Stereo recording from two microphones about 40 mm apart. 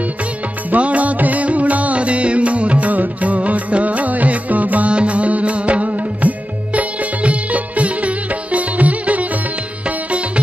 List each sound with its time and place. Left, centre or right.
0.7 s music: right